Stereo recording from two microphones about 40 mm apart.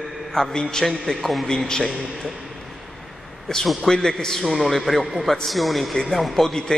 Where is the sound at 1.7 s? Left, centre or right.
Centre.